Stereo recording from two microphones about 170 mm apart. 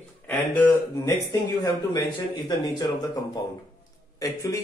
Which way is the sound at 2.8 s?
20° left (ahead or behind).